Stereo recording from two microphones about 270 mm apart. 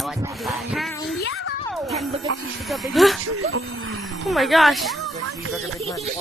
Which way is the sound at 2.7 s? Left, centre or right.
Centre.